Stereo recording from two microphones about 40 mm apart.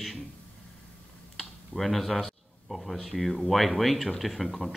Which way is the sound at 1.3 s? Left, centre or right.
Centre.